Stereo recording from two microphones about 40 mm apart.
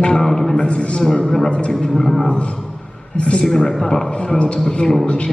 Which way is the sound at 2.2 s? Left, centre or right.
Left.